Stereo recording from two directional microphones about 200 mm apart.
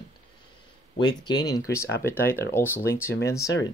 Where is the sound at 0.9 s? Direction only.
20° left (ahead or behind).